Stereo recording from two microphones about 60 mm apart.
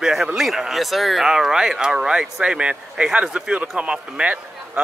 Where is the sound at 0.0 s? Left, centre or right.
Centre.